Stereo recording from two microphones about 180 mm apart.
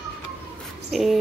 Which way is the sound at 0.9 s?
Centre (ahead or behind).